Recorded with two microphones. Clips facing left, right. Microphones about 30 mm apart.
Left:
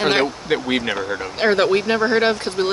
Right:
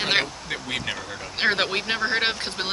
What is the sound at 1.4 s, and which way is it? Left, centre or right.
Speech, centre.